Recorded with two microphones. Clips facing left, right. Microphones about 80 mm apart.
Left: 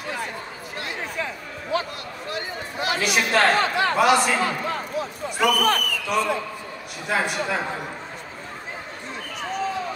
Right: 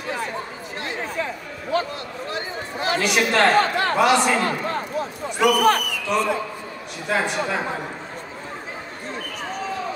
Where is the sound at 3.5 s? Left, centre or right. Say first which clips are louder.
Right 2 dB; right.